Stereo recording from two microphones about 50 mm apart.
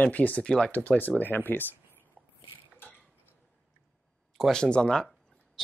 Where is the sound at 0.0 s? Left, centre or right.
Left.